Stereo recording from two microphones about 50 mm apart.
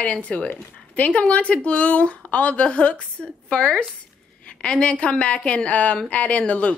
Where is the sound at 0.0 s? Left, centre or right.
Left.